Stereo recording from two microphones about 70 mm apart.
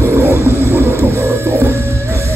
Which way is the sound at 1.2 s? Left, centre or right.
Right.